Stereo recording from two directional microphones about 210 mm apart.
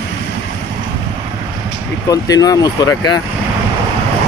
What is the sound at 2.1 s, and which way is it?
Speech, 15° left (ahead or behind).